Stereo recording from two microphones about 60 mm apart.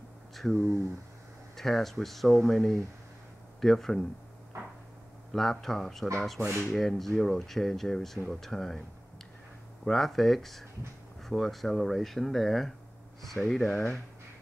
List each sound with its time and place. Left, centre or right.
0.4 s speech: centre
4.5 s a sound: right
5.3 s speech: centre
9.8 s speech: centre
13.4 s speech: centre